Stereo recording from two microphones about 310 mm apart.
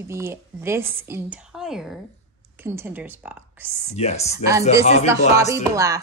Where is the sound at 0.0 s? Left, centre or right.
Centre.